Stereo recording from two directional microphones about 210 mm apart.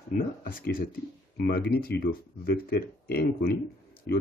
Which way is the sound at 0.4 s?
40° left (ahead or behind).